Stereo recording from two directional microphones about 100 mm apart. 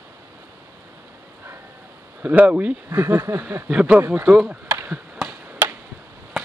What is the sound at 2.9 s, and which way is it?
Speech, 35° right (ahead or behind).